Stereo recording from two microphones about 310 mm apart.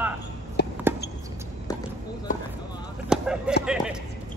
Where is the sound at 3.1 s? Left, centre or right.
Centre.